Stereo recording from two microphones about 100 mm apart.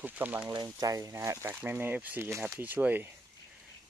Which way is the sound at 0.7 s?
35° right (ahead or behind).